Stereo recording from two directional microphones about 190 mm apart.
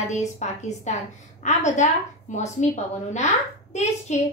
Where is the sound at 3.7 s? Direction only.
35° left (ahead or behind).